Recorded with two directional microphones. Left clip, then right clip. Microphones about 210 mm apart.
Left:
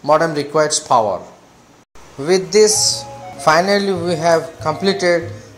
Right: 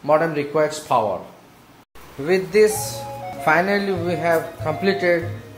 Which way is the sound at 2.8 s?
5° right (ahead or behind).